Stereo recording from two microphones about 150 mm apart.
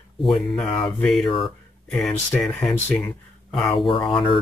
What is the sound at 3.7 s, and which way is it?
Speech, 35° left (ahead or behind).